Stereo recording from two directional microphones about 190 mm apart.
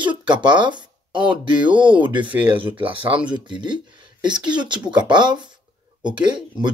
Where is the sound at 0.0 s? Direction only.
25° right (ahead or behind).